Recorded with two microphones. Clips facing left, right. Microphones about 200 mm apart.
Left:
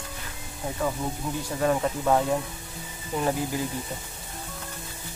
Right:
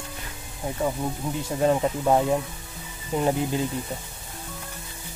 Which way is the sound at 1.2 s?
25° right (ahead or behind).